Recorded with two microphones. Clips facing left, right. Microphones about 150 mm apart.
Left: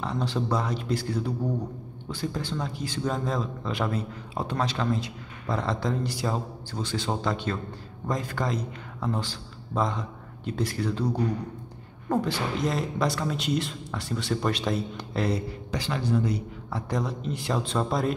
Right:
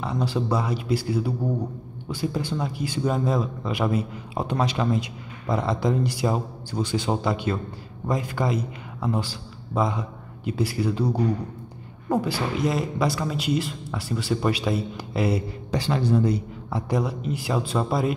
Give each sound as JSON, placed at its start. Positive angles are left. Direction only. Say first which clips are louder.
{"t": 0.0, "sound": "a man's voice", "louder": "right 3 dB", "side_deg": -5}
{"t": 15.7, "sound": "speech", "louder": "right 5 dB", "side_deg": -30}
{"t": 16.7, "sound": "a man's voice", "louder": "right 4 dB", "side_deg": -10}